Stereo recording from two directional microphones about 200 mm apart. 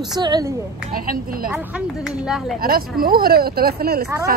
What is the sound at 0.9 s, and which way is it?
Speech, 45° right (ahead or behind).